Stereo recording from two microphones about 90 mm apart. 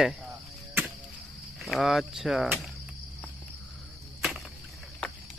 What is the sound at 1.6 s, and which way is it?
Speech, centre (ahead or behind).